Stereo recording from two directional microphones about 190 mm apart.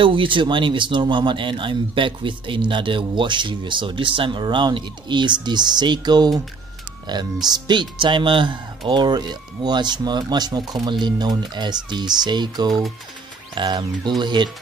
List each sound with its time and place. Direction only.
0.0 s speech: 25° right (ahead or behind)
7.4 s speech: 20° right (ahead or behind)